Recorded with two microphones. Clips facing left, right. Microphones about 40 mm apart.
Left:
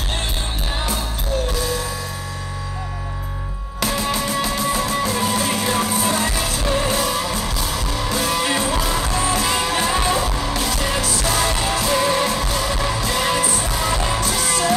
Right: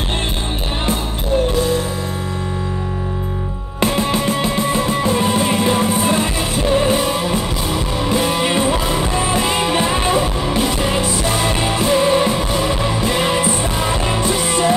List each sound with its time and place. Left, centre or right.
3.8 s music: right